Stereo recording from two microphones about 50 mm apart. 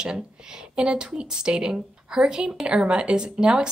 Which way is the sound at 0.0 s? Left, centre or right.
Centre.